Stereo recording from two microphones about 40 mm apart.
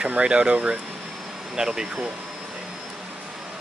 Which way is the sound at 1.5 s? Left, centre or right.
Centre.